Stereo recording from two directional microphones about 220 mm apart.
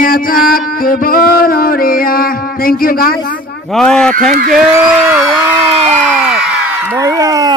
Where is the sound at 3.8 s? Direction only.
5° left (ahead or behind).